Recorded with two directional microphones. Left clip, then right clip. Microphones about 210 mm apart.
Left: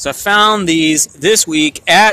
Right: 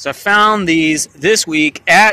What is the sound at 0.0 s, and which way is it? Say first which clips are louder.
Speech: even; centre (ahead or behind).